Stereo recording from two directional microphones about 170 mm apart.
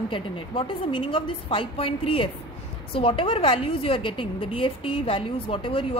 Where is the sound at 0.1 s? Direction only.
30° left (ahead or behind).